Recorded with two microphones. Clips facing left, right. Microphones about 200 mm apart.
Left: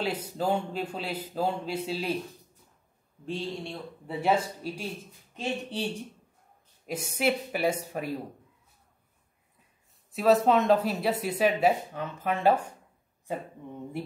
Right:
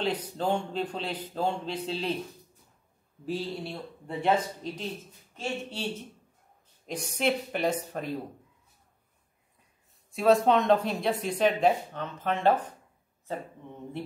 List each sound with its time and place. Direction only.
0.0 s speech: 10° left (ahead or behind)
3.3 s speech: 5° right (ahead or behind)
4.1 s speech: 10° left (ahead or behind)
10.1 s speech: centre (ahead or behind)